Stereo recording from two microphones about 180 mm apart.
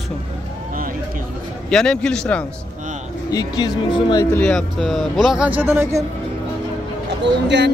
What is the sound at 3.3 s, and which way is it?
Speech, 20° left (ahead or behind).